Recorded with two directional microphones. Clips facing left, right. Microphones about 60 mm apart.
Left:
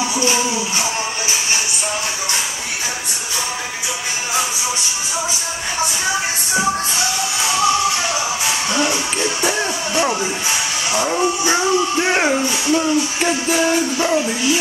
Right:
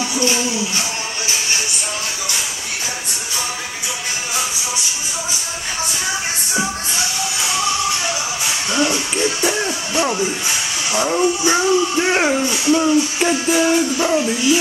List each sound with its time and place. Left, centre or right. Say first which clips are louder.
0.0 s music: left 1 dB; left
8.7 s music: right 3 dB; centre
10.9 s speech: right 1 dB; centre